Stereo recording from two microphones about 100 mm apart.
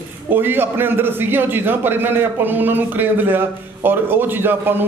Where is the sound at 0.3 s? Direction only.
20° right (ahead or behind).